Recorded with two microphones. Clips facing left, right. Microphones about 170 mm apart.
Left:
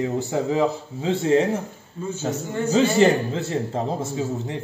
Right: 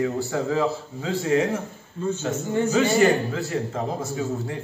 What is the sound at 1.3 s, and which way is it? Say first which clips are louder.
A man's voice: left 2 dB; 35° left (ahead or behind).